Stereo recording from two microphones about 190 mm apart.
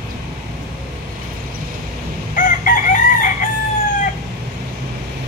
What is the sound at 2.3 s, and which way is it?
Chicken, 45° left (ahead or behind).